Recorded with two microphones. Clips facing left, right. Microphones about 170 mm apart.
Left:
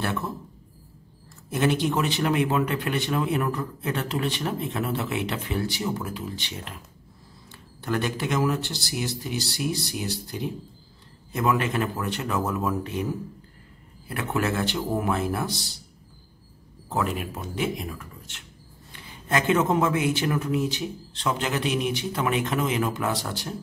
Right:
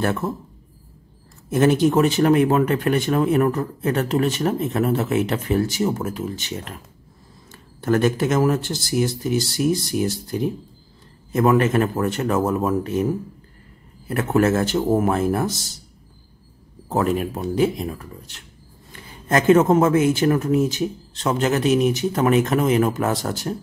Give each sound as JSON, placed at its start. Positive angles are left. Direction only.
{"t": 0.0, "sound": "a man's voice", "side_deg": -45}
{"t": 1.5, "sound": "a man's voice", "side_deg": -45}
{"t": 7.8, "sound": "a man's voice", "side_deg": -45}
{"t": 16.9, "sound": "a man's voice", "side_deg": -40}